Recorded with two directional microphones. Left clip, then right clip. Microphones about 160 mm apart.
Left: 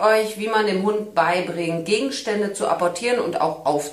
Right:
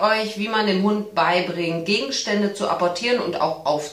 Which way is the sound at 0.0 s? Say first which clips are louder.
Left 2 dB; 30° left (ahead or behind).